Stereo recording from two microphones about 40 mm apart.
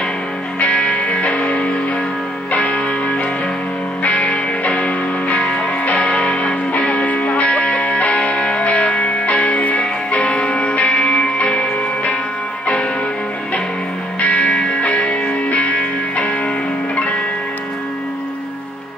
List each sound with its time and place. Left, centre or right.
0.6 s music: left
5.9 s music: left
14.2 s music: left